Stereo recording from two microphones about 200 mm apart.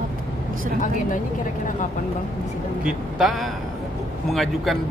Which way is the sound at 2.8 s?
Centre (ahead or behind).